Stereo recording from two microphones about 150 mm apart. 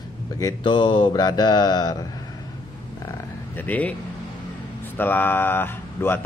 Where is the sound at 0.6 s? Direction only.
35° left (ahead or behind).